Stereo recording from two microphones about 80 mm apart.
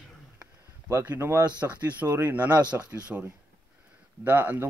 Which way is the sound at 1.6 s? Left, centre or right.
Centre.